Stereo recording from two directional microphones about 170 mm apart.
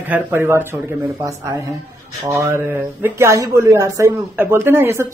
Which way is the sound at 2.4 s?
15° right (ahead or behind).